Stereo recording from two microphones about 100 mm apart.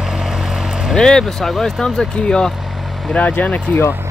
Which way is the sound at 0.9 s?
5° left (ahead or behind).